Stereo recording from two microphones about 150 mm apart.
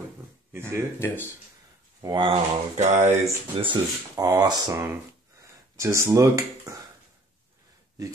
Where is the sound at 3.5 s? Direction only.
30° right (ahead or behind).